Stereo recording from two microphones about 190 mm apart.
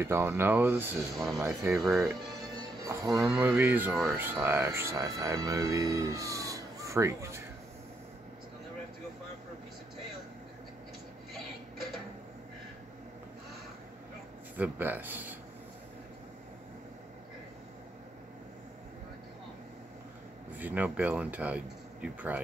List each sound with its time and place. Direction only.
0.0 s speech: 10° right (ahead or behind)
1.4 s speech: 15° right (ahead or behind)
1.8 s speech: centre (ahead or behind)
3.9 s speech: centre (ahead or behind)
4.2 s speech: 10° right (ahead or behind)
14.6 s speech: 10° right (ahead or behind)
20.5 s speech: 10° right (ahead or behind)